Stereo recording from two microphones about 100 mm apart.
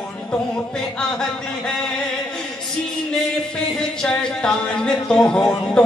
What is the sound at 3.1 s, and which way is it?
Speech, 10° left (ahead or behind).